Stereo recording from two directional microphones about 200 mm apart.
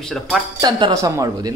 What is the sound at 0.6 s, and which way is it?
Speech, 20° right (ahead or behind).